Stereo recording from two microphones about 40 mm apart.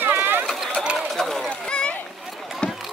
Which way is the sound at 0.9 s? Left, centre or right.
Centre.